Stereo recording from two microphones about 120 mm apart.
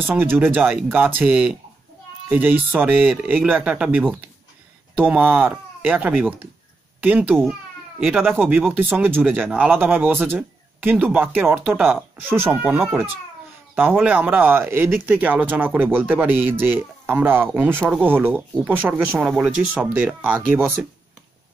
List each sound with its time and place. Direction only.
0.1 s speech: 20° right (ahead or behind)